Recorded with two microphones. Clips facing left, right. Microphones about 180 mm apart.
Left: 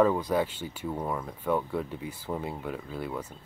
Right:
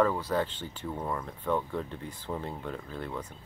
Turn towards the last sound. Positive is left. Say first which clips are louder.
# left 2 dB
turn(degrees=5)  # may be behind; listen again after turning